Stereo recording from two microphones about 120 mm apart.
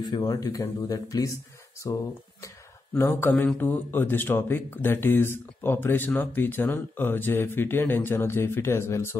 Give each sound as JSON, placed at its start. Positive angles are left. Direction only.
{"t": 0.0, "sound": "speech", "side_deg": 35}